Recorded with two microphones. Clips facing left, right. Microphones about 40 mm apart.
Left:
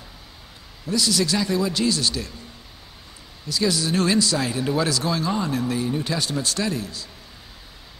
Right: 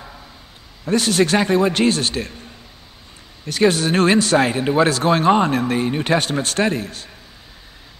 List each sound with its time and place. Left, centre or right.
0.8 s speech: right
3.4 s speech: right